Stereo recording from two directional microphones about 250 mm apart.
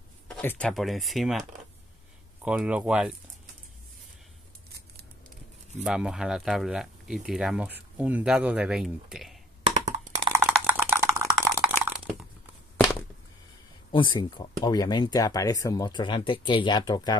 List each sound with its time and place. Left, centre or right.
0.3 s speech: centre
2.4 s speech: centre
5.9 s speech: centre
9.6 s computer keyboard: right
10.2 s a sound: centre
13.9 s speech: centre